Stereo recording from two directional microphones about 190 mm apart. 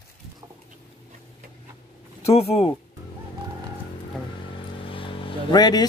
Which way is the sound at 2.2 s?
30° left (ahead or behind).